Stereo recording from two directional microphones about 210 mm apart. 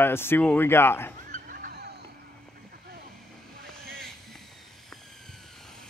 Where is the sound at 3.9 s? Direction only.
5° left (ahead or behind).